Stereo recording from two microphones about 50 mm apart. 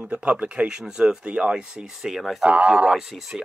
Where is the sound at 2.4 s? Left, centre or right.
Right.